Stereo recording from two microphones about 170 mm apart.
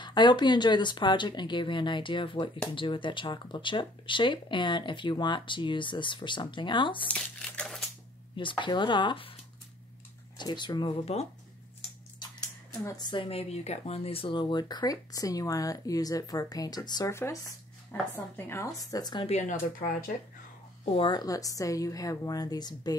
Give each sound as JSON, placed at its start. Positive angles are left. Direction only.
{"t": 0.0, "sound": "speech", "side_deg": 25}
{"t": 7.1, "sound": "crumpling", "side_deg": 5}
{"t": 8.4, "sound": "speech", "side_deg": 30}
{"t": 10.3, "sound": "speech", "side_deg": 25}
{"t": 12.8, "sound": "speech", "side_deg": 25}
{"t": 19.2, "sound": "speech", "side_deg": 45}
{"t": 20.9, "sound": "speech", "side_deg": 25}